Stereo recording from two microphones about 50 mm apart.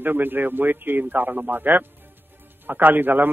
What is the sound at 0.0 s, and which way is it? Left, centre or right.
A man's voice, right.